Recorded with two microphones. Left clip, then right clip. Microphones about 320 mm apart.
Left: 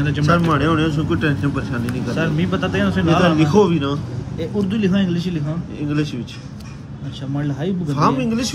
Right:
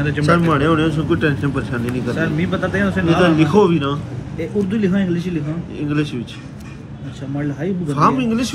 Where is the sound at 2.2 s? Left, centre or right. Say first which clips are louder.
Even; centre.